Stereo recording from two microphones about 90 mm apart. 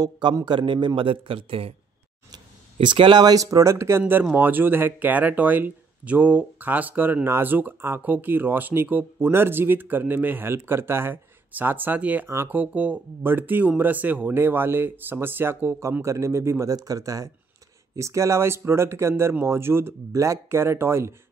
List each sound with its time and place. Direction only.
0.5 s a man's voice: 60° right (ahead or behind); by 1.7 s 85° right
2.3 s speech: 65° right (ahead or behind); by 4.0 s 30° right (ahead or behind)
4.1 s speech: 20° right (ahead or behind)